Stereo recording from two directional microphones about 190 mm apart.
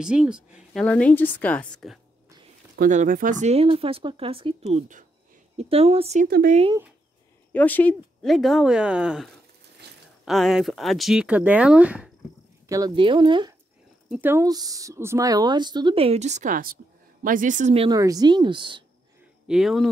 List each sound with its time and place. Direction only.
0.0 s speech: 5° right (ahead or behind)
0.8 s a woman's voice: 5° left (ahead or behind)
2.7 s speech: 45° right (ahead or behind)
6.2 s speech: 50° right (ahead or behind)
7.5 s speech: 10° left (ahead or behind)
9.8 s a sound: 60° right (ahead or behind)
10.2 s speech: centre (ahead or behind)
12.6 s speech: 20° right (ahead or behind)
14.1 s speech: 10° right (ahead or behind); by 17.8 s 40° right (ahead or behind)
17.8 s speech: 20° right (ahead or behind)
19.4 s speech: centre (ahead or behind)